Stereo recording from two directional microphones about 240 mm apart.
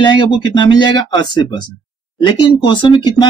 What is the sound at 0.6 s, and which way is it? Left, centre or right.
Speech, centre.